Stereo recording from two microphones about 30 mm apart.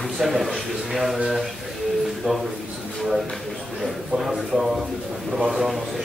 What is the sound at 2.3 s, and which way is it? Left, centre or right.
Speech, centre.